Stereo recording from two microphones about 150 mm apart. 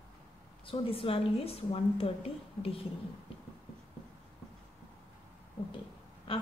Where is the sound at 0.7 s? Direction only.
35° left (ahead or behind).